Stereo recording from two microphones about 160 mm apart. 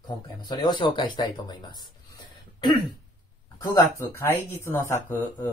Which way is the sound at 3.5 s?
20° left (ahead or behind).